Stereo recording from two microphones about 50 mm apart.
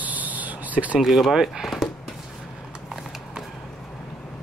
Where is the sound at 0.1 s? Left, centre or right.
Right.